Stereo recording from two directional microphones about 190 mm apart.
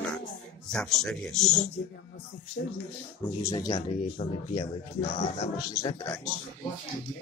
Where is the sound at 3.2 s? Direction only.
20° left (ahead or behind).